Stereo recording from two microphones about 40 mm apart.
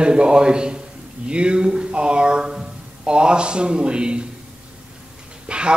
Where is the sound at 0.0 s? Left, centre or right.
Right.